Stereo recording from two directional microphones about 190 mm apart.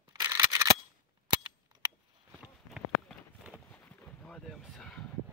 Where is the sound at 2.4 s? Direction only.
5° right (ahead or behind).